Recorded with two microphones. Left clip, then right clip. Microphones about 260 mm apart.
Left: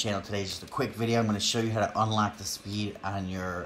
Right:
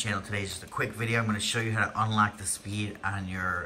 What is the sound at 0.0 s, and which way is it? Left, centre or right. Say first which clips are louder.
Speech: left 1 dB; centre.